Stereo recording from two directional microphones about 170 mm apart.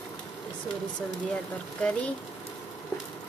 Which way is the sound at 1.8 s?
5° left (ahead or behind).